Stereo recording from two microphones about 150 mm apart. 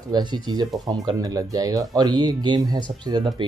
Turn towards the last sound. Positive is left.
turn(degrees=-30)  # may be behind; listen again after turning